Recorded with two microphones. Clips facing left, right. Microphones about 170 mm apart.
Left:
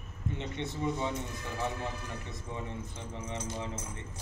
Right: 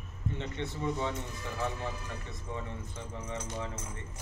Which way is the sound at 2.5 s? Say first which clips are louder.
Even; 20° left (ahead or behind).